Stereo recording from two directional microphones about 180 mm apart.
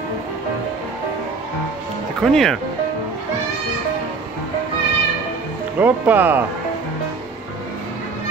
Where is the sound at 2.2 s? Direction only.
Centre (ahead or behind).